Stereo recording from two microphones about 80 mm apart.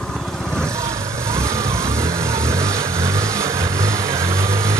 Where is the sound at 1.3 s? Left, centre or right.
Right.